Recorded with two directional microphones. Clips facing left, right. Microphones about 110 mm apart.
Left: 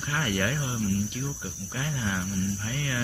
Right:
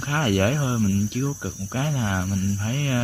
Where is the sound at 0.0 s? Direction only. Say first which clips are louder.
Right 7 dB; 65° right (ahead or behind).